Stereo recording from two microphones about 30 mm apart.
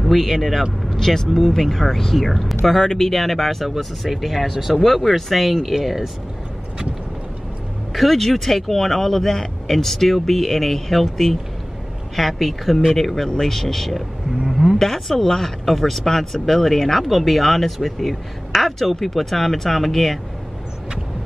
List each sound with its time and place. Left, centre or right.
0.0 s speech: centre
0.8 s speech: centre
7.9 s speech: centre
14.4 s a sound: centre
14.8 s speech: centre